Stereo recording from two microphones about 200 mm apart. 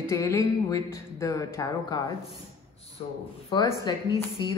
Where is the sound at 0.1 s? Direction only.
15° left (ahead or behind).